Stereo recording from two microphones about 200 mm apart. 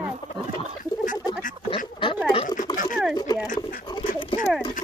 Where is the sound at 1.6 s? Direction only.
25° left (ahead or behind).